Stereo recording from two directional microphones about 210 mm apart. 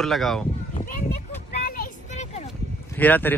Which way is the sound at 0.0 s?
Centre (ahead or behind).